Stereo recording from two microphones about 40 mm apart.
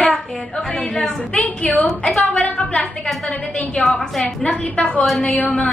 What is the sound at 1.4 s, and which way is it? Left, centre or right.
Speech, left.